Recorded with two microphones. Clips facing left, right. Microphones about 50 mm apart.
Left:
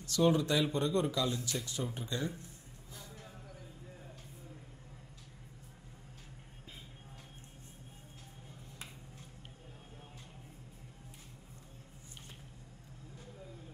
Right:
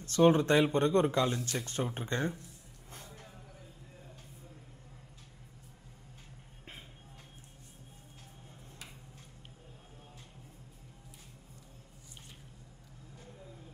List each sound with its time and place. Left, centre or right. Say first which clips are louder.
0.0 s speech: right 4 dB; right